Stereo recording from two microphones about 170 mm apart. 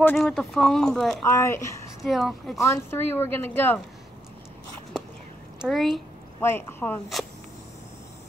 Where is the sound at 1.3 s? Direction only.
15° left (ahead or behind).